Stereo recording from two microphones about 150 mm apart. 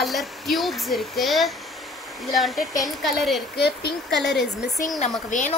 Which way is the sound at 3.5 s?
90° left.